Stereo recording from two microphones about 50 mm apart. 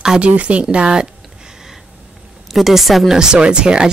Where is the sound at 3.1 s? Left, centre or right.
Centre.